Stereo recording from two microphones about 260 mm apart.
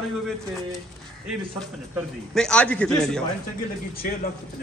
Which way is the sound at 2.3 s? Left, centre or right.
Centre.